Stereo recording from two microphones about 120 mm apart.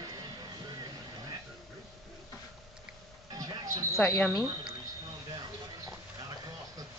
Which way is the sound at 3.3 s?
30° right (ahead or behind).